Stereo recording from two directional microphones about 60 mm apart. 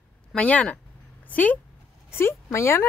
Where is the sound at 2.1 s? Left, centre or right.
Left.